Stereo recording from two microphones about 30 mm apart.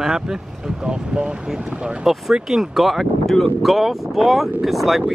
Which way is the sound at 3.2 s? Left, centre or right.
Centre.